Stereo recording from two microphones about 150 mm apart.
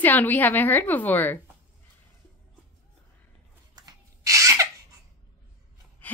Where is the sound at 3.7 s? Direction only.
25° right (ahead or behind).